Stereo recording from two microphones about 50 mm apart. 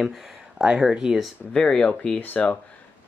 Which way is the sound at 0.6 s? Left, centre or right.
Centre.